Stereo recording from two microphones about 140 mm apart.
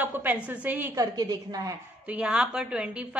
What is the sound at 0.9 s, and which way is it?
Speech, 25° right (ahead or behind).